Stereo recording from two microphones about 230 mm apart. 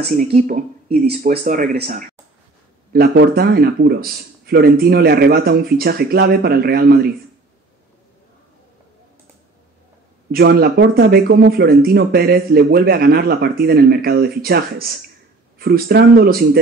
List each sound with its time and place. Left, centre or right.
0.2 s speech: right
10.3 s speech: right